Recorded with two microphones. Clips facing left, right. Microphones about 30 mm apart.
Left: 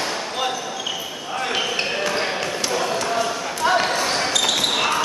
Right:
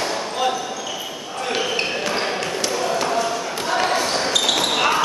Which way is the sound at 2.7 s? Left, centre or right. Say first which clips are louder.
Even; centre.